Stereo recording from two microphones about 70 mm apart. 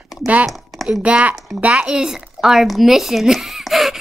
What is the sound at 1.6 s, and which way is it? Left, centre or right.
A woman's voice, centre.